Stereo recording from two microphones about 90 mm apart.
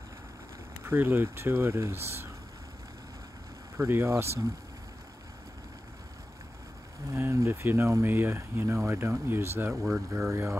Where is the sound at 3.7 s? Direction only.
30° right (ahead or behind).